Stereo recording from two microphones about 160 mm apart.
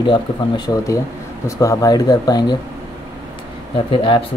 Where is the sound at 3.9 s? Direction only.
30° left (ahead or behind).